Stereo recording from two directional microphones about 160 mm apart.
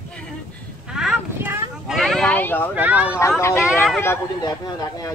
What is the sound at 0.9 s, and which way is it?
Speech, 5° right (ahead or behind).